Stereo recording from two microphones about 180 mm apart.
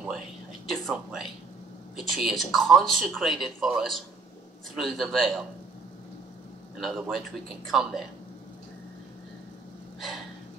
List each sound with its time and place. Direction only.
0.7 s speech: centre (ahead or behind)
6.8 s speech: centre (ahead or behind)
9.9 s a sound: centre (ahead or behind)